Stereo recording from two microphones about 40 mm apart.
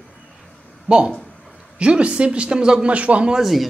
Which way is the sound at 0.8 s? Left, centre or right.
Right.